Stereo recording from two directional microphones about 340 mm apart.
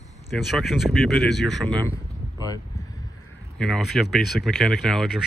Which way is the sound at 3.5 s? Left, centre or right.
Centre.